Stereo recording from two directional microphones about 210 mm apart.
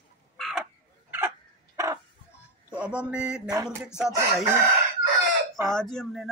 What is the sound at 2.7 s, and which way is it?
Speech, 5° right (ahead or behind).